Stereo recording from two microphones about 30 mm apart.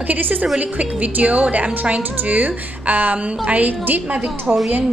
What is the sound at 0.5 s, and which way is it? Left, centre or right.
A woman's voice, right.